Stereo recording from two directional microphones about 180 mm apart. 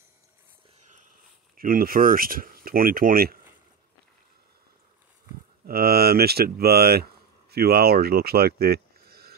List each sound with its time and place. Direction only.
1.6 s speech: 55° right (ahead or behind)
5.7 s speech: 60° right (ahead or behind)